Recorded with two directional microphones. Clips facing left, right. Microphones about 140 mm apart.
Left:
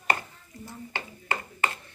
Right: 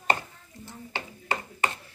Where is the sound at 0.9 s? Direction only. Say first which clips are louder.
Right 2 dB; 15° right (ahead or behind).